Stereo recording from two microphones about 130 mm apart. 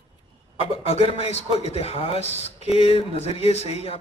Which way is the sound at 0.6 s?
50° left (ahead or behind).